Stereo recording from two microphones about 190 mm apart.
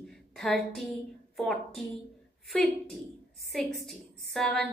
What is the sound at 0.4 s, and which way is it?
A woman's voice, centre (ahead or behind).